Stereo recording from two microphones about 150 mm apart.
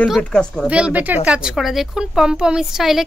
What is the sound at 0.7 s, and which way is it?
A woman's voice, 10° right (ahead or behind).